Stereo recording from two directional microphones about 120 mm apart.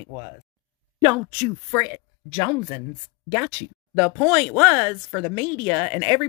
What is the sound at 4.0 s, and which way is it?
Speech, 25° right (ahead or behind).